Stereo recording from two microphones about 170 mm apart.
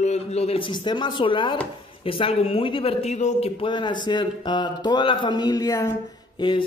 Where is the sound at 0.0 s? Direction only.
40° left (ahead or behind).